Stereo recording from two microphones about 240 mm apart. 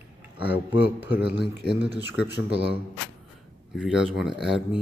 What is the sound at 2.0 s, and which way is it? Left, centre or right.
Speech, centre.